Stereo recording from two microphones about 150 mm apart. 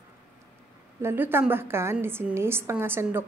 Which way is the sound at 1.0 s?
15° right (ahead or behind).